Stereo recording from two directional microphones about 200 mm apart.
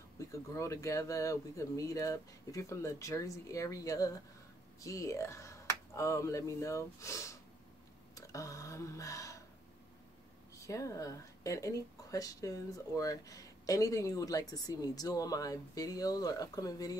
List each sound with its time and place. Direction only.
0.2 s speech: 15° left (ahead or behind)
10.5 s speech: 15° left (ahead or behind)